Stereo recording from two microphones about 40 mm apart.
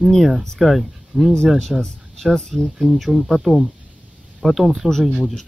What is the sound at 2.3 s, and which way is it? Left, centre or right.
Speech, centre.